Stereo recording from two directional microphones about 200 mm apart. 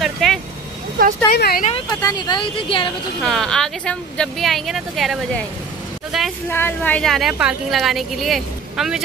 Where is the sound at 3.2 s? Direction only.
Centre (ahead or behind).